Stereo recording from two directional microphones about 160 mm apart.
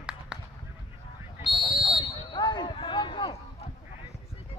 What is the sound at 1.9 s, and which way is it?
Fire alarm, 25° left (ahead or behind).